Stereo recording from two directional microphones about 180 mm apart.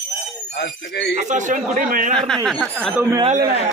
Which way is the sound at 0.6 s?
70° left (ahead or behind).